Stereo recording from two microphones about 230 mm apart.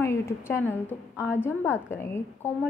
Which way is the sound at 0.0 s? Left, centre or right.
Centre.